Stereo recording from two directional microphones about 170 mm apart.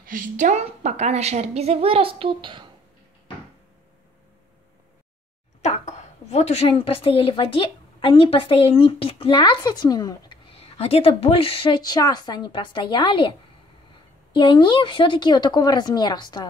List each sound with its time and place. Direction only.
0.0 s a woman's voice: 50° right (ahead or behind); by 2.7 s 30° right (ahead or behind)
5.6 s a woman's voice: 40° left (ahead or behind)
14.3 s speech: 30° left (ahead or behind)